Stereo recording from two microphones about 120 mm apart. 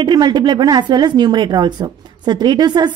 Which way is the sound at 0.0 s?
40° right (ahead or behind).